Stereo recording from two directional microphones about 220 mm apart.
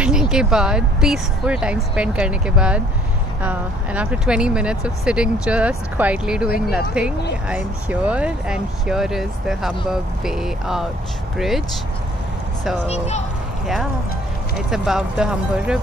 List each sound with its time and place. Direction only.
0.0 s speech: 5° right (ahead or behind)
12.8 s speech: 30° left (ahead or behind)
14.7 s speech: 5° right (ahead or behind)